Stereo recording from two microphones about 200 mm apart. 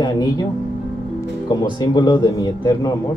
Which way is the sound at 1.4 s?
20° left (ahead or behind).